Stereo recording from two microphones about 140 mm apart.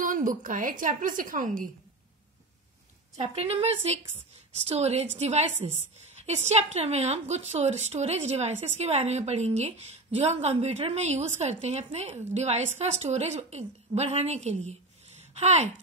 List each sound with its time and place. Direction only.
0.0 s a woman's voice: 70° right (ahead or behind)
3.2 s a woman's voice: 50° right (ahead or behind)